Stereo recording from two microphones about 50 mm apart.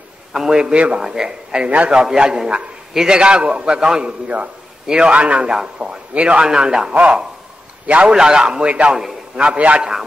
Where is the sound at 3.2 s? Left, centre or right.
Right.